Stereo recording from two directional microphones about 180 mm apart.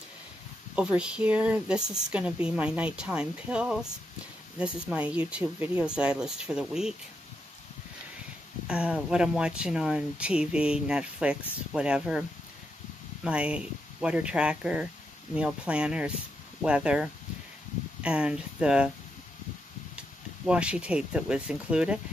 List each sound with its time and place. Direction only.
0.7 s speech: 5° right (ahead or behind)
8.6 s speech: 5° right (ahead or behind)
20.0 s speech: 5° right (ahead or behind)